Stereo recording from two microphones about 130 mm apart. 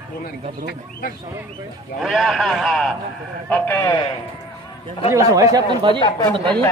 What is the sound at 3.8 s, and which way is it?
Speech, 35° left (ahead or behind).